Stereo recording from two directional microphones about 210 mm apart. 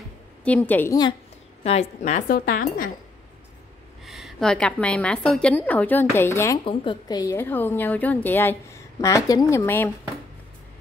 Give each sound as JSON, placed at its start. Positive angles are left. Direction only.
{"t": 0.4, "sound": "a woman's voice", "side_deg": 5}
{"t": 1.6, "sound": "speech", "side_deg": 30}
{"t": 4.0, "sound": "a woman's voice", "side_deg": 0}